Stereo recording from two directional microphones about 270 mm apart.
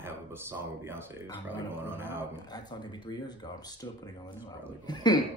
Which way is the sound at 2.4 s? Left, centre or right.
Centre.